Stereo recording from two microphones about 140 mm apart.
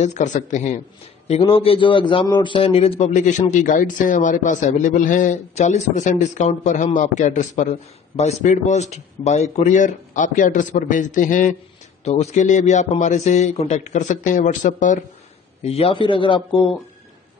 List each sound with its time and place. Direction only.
0.0 s a man's voice: 60° left (ahead or behind)
1.5 s a man's voice: 40° left (ahead or behind)
3.2 s a man's voice: 60° left (ahead or behind)
12.0 s a man's voice: 50° left (ahead or behind)
15.6 s a man's voice: 45° left (ahead or behind)